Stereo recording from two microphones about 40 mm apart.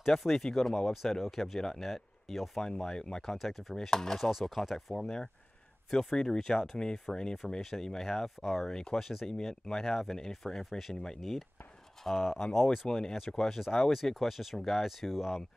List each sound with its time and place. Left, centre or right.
0.0 s speech: centre
3.3 s speech: centre
3.8 s speech: centre
4.3 s speech: centre
8.0 s speech: centre
13.1 s speech: centre